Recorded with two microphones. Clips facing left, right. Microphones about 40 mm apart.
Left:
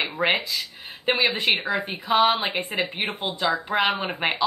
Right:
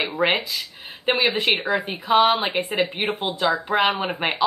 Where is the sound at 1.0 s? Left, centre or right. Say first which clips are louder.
Right 2 dB; centre.